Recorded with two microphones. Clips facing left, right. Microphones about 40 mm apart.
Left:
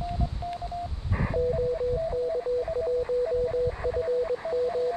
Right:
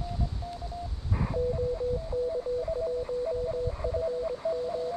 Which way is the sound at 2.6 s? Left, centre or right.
Left.